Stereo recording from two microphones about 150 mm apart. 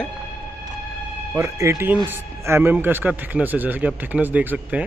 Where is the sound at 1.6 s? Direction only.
20° right (ahead or behind).